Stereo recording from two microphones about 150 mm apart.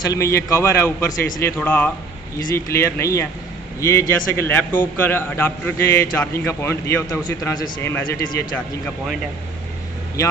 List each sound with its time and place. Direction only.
0.0 s a man's voice: 20° left (ahead or behind)
7.8 s a man's voice: 15° left (ahead or behind)